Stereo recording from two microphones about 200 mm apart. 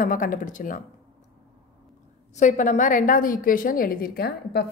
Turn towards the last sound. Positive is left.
turn(degrees=55)  # may be behind; listen again after turning